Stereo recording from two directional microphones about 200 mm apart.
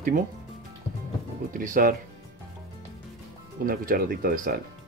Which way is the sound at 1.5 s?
40° right (ahead or behind).